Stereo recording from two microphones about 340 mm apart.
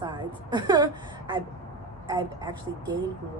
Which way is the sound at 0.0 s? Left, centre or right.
Centre.